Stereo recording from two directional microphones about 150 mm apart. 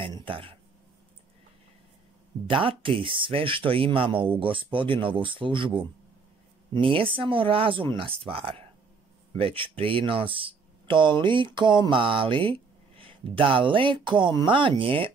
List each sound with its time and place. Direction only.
0.1 s speech: 35° right (ahead or behind)
2.5 s speech: 35° right (ahead or behind)